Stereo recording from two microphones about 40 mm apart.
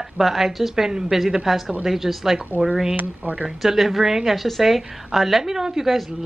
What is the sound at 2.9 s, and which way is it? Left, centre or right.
Speech, right.